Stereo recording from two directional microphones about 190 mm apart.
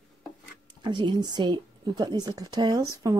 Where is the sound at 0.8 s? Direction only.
25° right (ahead or behind).